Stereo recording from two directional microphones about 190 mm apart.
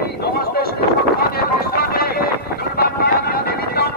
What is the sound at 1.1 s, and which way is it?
Run, 55° left (ahead or behind).